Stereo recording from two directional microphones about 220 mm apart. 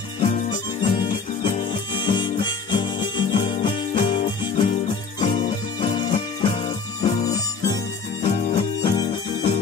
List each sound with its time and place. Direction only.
0.2 s music: 20° left (ahead or behind)